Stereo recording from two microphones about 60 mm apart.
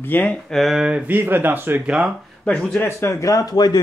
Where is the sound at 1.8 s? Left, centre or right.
Centre.